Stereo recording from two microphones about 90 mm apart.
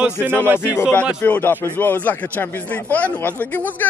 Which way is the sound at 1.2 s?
20° left (ahead or behind).